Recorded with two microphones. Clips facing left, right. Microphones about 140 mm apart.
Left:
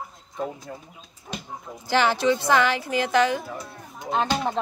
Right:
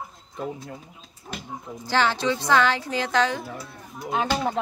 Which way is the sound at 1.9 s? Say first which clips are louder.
Left 2 dB; 15° left (ahead or behind).